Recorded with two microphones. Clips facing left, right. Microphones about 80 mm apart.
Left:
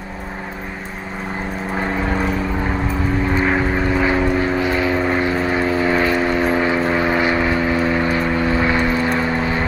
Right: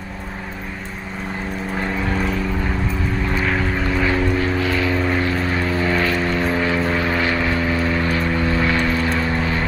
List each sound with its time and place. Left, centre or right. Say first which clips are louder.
3.3 s vehicle: left 3 dB; left